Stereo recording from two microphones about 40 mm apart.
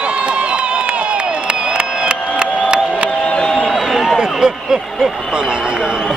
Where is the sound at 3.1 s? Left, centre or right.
Left.